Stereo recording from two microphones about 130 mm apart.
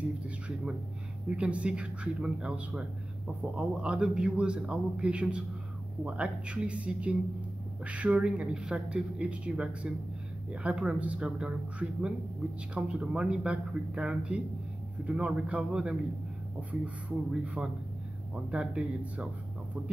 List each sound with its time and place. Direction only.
1.3 s speech: 10° right (ahead or behind)